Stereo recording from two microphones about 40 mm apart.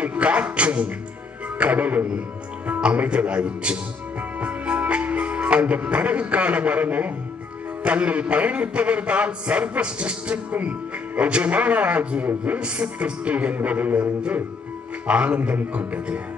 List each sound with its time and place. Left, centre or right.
0.0 s music: right
1.6 s a man's voice: right
2.8 s speech: right
4.4 s music: right
7.8 s a man's voice: right
13.9 s a man's voice: right